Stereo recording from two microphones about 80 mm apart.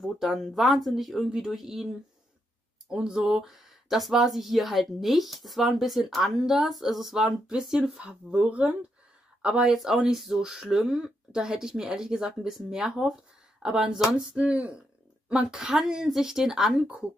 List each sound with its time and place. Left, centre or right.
0.0 s speech: centre
2.9 s speech: centre